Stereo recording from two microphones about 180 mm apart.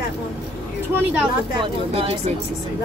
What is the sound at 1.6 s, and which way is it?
Speech, 35° right (ahead or behind).